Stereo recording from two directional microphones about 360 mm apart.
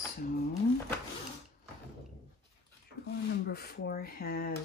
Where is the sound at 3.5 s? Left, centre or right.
Left.